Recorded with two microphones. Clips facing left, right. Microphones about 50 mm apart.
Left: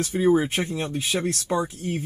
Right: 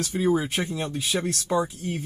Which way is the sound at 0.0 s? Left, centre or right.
Left.